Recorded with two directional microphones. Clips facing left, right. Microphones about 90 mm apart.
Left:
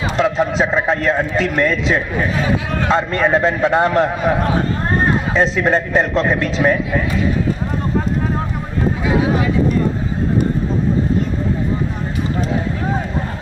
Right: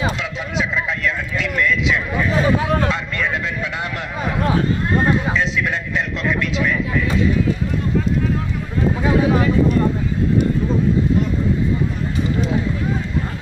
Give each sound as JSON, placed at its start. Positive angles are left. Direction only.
{"t": 0.2, "sound": "a man's voice", "side_deg": 40}